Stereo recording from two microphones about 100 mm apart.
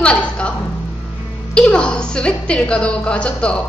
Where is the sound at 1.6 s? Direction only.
10° left (ahead or behind).